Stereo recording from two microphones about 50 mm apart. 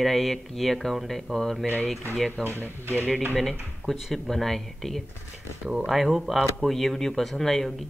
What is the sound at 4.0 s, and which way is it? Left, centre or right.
Speech, centre.